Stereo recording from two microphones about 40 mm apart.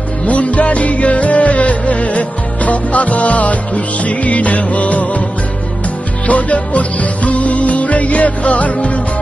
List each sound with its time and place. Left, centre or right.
0.3 s music: left
6.2 s music: left